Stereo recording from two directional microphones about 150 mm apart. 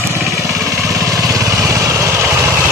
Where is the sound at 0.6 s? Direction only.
20° right (ahead or behind).